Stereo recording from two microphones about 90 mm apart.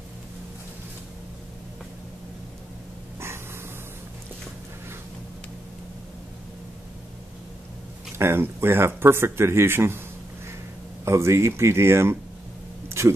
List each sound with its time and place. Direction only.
8.2 s speech: 25° right (ahead or behind)
11.1 s speech: 30° right (ahead or behind)